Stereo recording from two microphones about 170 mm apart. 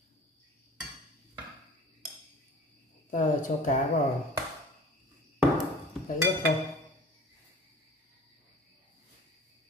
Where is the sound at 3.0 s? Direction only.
50° left (ahead or behind).